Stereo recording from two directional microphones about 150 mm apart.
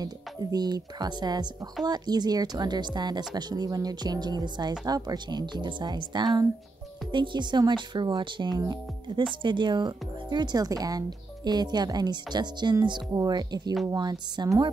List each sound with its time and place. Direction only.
0.0 s speech: 25° right (ahead or behind)